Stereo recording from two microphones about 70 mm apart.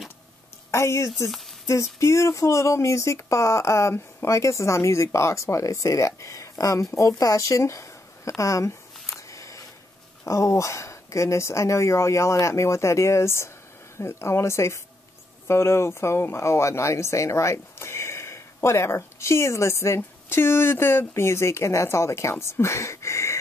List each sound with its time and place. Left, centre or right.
0.7 s a woman's voice: left
1.1 s speech: centre
1.7 s speech: left
7.0 s a sound: left
10.2 s speech: left